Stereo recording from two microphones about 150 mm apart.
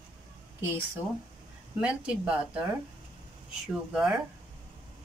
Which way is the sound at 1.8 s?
5° right (ahead or behind).